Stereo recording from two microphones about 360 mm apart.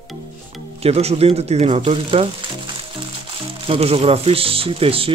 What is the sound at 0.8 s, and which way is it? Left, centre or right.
Speech, centre.